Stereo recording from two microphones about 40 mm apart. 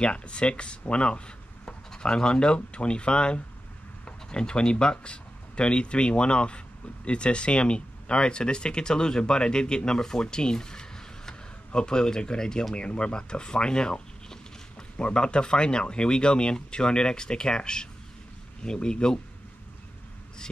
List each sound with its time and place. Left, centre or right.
0.0 s speech: left